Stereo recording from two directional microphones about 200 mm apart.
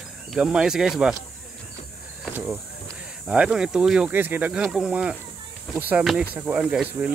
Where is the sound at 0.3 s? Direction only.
5° right (ahead or behind).